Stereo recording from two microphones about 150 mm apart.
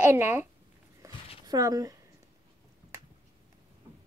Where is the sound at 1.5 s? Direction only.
25° right (ahead or behind).